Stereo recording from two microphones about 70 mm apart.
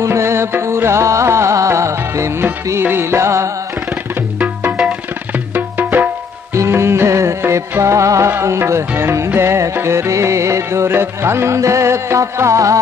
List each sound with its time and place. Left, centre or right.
0.0 s music: right
2.8 s music: right
3.9 s music: right
6.5 s music: right